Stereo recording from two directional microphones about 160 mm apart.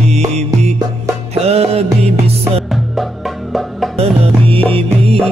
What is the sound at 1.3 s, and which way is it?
Music, 40° right (ahead or behind).